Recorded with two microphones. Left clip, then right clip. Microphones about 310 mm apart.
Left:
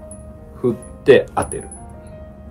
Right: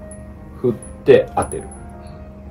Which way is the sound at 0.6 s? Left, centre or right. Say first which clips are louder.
Even; centre.